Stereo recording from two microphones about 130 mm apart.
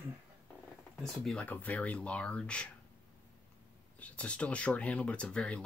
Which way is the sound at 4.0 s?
10° left (ahead or behind).